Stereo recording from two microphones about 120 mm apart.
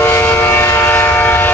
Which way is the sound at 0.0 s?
20° left (ahead or behind).